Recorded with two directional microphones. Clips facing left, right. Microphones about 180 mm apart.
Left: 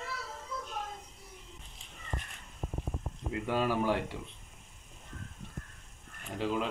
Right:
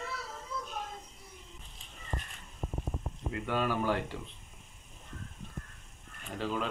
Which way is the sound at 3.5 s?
10° left (ahead or behind).